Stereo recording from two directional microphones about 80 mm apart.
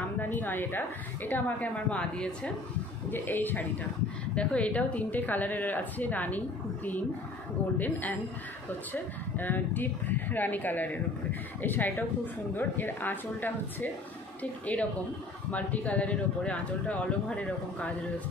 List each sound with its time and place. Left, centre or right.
0.2 s a woman's voice: left
3.1 s a woman's voice: left